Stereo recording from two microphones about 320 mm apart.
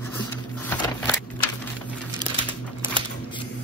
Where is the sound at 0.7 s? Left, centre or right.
Centre.